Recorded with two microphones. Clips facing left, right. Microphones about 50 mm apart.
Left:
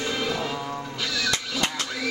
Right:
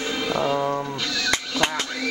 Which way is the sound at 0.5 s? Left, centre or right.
Right.